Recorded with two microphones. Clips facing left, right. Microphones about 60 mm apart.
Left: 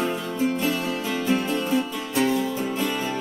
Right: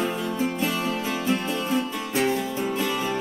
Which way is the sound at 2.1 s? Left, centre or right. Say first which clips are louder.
Left 1 dB; right.